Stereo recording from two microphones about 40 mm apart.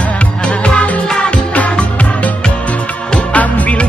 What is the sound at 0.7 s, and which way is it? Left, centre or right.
Music, left.